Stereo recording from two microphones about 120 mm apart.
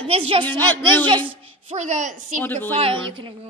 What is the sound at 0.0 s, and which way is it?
Speech, 55° right (ahead or behind).